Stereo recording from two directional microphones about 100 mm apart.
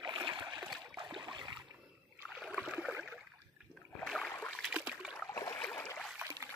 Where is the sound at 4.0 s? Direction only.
5° left (ahead or behind).